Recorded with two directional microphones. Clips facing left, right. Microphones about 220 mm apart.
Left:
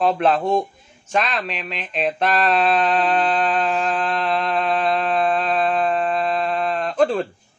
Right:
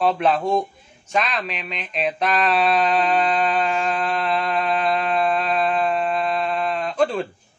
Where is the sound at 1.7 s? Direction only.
Centre (ahead or behind).